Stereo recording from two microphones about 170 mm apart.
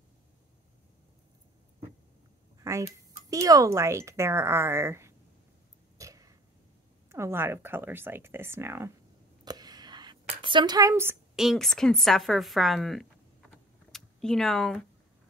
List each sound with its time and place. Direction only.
2.6 s speech: 15° right (ahead or behind)
5.9 s throat clearing: 20° right (ahead or behind)
7.1 s speech: 15° right (ahead or behind)
9.4 s a sound: 25° right (ahead or behind)
11.3 s speech: centre (ahead or behind)